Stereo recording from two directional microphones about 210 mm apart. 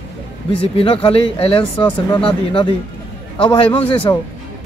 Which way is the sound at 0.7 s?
25° left (ahead or behind).